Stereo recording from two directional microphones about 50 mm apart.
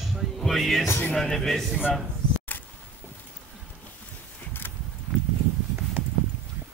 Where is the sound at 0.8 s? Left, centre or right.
Left.